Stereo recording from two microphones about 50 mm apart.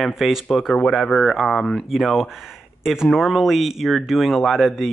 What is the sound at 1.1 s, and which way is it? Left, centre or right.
Speech, centre.